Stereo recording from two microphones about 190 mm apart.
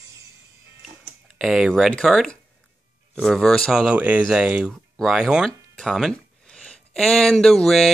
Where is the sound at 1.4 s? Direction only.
5° right (ahead or behind).